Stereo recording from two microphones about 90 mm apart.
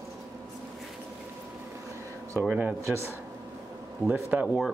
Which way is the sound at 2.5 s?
15° right (ahead or behind).